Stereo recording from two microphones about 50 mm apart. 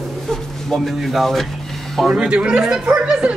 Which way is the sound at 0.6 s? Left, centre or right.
Centre.